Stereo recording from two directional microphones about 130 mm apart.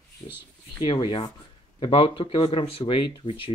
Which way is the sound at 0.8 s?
35° left (ahead or behind).